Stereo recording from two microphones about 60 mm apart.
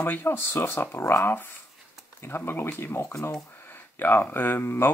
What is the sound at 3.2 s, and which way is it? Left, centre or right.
Speech, left.